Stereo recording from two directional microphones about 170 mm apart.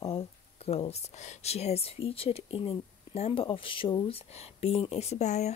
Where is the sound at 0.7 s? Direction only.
35° left (ahead or behind).